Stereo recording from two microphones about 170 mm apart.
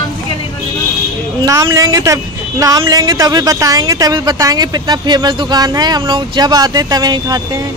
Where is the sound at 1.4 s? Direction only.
20° right (ahead or behind).